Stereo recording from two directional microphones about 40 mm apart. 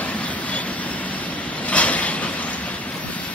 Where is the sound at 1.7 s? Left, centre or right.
Left.